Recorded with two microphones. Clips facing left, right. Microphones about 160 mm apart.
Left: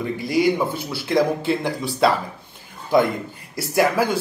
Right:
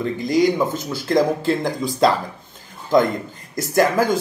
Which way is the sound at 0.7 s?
45° right (ahead or behind).